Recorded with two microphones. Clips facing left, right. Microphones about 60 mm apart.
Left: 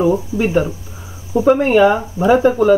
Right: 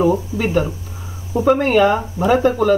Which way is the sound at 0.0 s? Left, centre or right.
Centre.